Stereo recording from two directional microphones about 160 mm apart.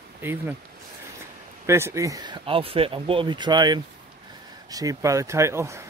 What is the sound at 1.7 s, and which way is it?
Speech, 15° right (ahead or behind).